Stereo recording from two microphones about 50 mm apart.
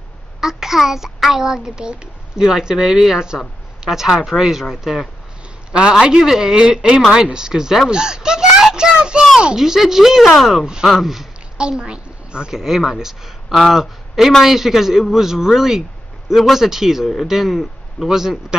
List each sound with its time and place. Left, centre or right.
0.4 s a child's voice: centre
5.7 s a man's voice: right; by 10.6 s centre
10.6 s a man's voice: centre
11.8 s a woman's voice: centre